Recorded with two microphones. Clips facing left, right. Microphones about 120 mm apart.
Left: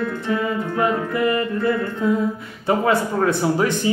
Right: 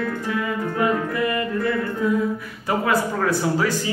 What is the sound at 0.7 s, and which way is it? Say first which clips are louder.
Speech: even; 25° left (ahead or behind).